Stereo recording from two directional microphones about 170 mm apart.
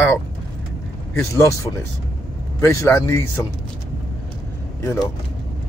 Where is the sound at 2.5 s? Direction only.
15° left (ahead or behind).